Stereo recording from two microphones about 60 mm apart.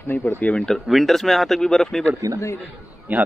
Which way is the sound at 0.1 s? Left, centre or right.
Left.